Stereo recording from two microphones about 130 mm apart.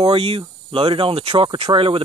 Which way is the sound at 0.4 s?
45° right (ahead or behind).